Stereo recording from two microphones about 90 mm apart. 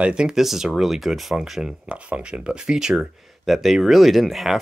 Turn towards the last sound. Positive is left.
turn(degrees=0)  # may be behind; listen again after turning